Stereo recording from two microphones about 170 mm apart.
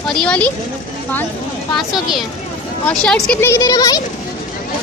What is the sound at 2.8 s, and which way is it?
Speech, 5° left (ahead or behind).